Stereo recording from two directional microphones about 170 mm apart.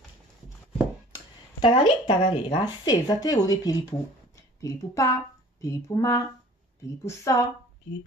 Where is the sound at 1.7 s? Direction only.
30° left (ahead or behind).